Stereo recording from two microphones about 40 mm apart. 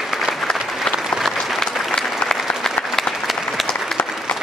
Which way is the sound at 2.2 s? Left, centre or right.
Left.